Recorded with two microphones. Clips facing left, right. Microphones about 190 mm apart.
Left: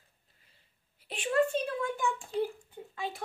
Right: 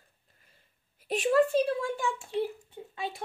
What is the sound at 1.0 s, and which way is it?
Speech, 40° right (ahead or behind).